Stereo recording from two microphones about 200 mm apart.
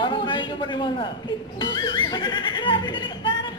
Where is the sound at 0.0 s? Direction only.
25° left (ahead or behind).